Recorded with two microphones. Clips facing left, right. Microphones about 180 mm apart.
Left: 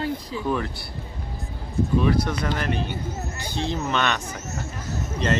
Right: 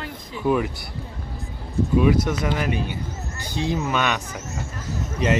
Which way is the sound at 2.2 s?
20° right (ahead or behind).